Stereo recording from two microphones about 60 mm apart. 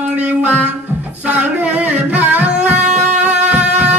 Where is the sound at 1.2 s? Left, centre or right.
Right.